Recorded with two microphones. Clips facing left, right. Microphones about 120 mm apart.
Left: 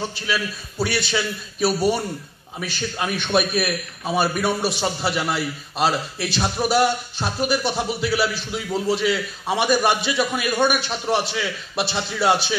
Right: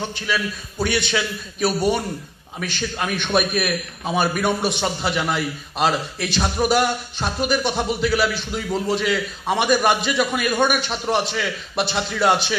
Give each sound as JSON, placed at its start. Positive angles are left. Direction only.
{"t": 0.3, "sound": "a man's voice", "side_deg": 5}